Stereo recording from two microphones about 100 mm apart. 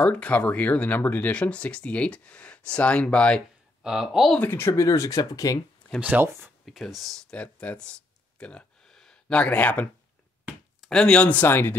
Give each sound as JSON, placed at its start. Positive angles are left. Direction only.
{"t": 0.0, "sound": "speech", "side_deg": 15}
{"t": 3.8, "sound": "speech", "side_deg": -5}
{"t": 4.4, "sound": "speech", "side_deg": 20}
{"t": 5.9, "sound": "speech", "side_deg": -15}
{"t": 6.2, "sound": "speech", "side_deg": -25}
{"t": 6.6, "sound": "speech", "side_deg": 0}